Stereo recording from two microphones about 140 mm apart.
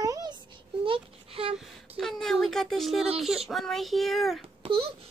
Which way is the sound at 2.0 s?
Centre (ahead or behind).